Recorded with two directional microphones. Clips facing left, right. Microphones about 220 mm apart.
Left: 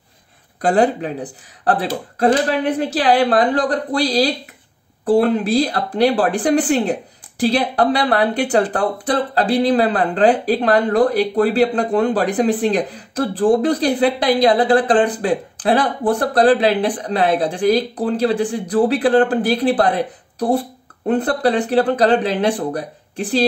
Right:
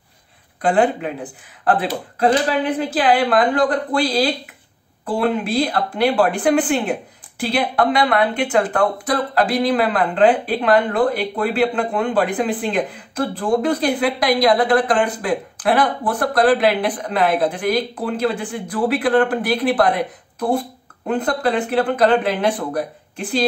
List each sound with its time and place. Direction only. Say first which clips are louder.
0.6 s speech: left 1 dB; 40° left (ahead or behind)